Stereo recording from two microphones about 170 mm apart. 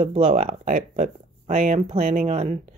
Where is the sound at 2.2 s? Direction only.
40° right (ahead or behind).